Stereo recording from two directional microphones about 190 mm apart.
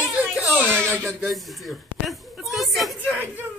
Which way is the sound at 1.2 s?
Centre (ahead or behind).